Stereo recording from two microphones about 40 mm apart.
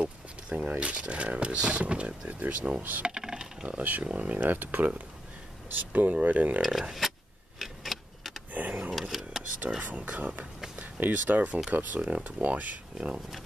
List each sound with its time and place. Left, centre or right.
0.0 s speech: right
2.2 s speech: right
3.2 s dishes: centre
3.6 s speech: right
4.5 s speech: right
6.6 s a sound: centre
8.5 s a sound: right
8.9 s a sound: centre
9.8 s speech: right
10.8 s speech: right
12.9 s speech: right